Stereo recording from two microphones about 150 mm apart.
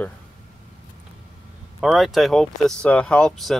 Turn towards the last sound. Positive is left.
turn(degrees=5)  # may be behind; listen again after turning